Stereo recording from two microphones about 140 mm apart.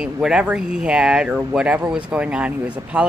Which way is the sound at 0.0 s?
5° right (ahead or behind).